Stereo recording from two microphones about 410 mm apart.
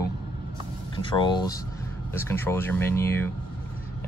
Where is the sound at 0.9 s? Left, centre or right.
Centre.